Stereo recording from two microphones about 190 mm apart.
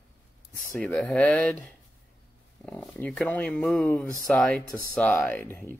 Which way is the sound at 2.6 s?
10° left (ahead or behind).